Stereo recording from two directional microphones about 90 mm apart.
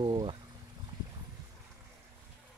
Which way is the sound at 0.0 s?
65° right (ahead or behind).